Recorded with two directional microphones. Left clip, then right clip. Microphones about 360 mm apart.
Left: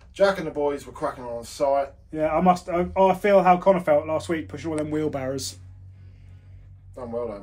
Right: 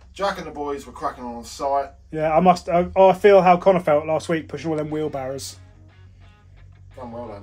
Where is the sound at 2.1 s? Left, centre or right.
Right.